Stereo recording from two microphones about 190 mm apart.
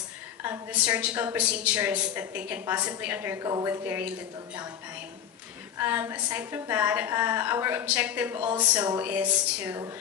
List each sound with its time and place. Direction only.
0.4 s a woman's voice: 10° right (ahead or behind)
5.8 s a woman's voice: 10° right (ahead or behind)
9.0 s a woman's voice: 10° right (ahead or behind)